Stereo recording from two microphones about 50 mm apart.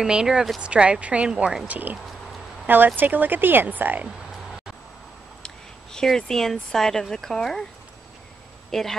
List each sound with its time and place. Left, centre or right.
0.0 s speech: centre
1.3 s speech: centre
1.7 s speech: right
5.4 s speech: centre
8.7 s a woman's voice: centre